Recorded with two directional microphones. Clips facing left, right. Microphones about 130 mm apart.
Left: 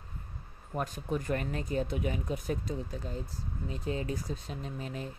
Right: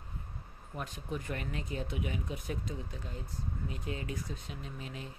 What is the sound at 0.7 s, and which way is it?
Speech, 45° left (ahead or behind).